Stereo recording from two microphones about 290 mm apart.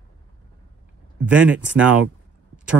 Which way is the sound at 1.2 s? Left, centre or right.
Centre.